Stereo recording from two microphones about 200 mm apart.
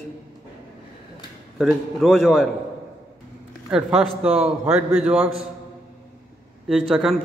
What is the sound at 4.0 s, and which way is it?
Speech, 5° right (ahead or behind).